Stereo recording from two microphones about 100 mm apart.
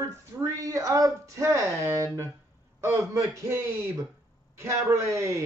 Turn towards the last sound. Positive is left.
turn(degrees=-30)  # may be behind; listen again after turning